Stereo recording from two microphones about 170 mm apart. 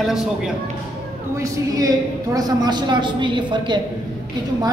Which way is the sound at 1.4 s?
20° right (ahead or behind).